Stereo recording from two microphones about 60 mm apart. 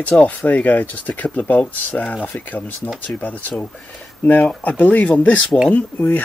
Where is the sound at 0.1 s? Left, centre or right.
Left.